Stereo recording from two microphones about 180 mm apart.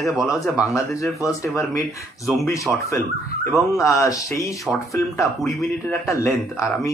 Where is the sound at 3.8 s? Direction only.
15° left (ahead or behind).